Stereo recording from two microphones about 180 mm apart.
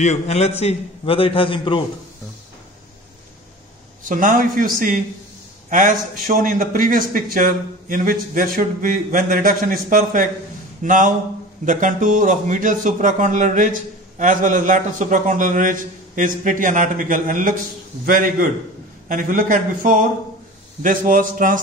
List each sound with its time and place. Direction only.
0.0 s a man's voice: 40° left (ahead or behind)
4.0 s a man's voice: 45° right (ahead or behind)